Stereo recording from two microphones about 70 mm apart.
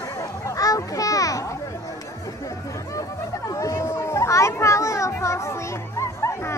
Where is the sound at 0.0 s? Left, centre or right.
Left.